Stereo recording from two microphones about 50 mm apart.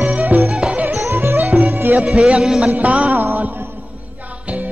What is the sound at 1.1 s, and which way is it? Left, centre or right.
Music, right.